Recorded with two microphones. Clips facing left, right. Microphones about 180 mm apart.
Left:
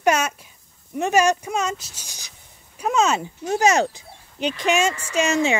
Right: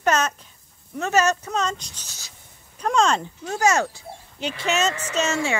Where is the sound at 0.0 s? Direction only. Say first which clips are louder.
Left 2 dB; 10° left (ahead or behind).